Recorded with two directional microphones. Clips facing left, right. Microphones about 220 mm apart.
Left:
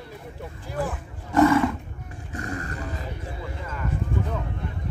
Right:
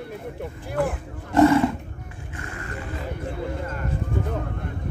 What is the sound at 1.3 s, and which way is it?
Roaring cats, 25° right (ahead or behind).